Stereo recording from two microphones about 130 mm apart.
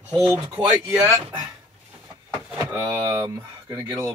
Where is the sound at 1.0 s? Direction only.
25° right (ahead or behind).